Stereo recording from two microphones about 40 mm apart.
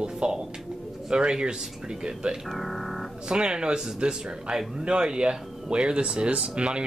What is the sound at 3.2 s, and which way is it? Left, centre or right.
Speech, right.